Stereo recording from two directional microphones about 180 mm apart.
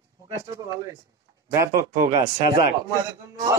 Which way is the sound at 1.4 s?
15° right (ahead or behind).